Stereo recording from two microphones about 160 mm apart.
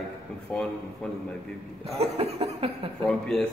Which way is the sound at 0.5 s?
10° left (ahead or behind).